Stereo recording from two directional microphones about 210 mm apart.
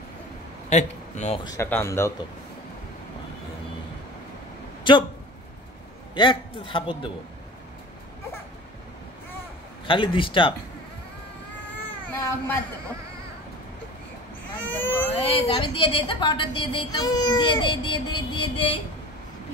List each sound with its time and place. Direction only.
0.7 s speech: 35° left (ahead or behind)
1.4 s speech: 15° left (ahead or behind)
4.9 s a woman's voice: 20° left (ahead or behind)
6.1 s a woman's voice: 25° left (ahead or behind)
9.8 s a woman's voice: 25° left (ahead or behind)
12.1 s a sound: 10° left (ahead or behind)
14.6 s speech: 10° left (ahead or behind)
15.1 s a woman's voice: 25° left (ahead or behind)